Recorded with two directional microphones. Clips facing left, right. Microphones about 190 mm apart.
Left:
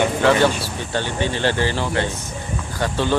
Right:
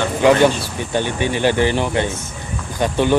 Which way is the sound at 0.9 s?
15° right (ahead or behind).